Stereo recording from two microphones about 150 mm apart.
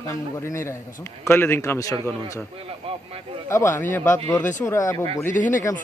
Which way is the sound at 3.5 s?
20° left (ahead or behind).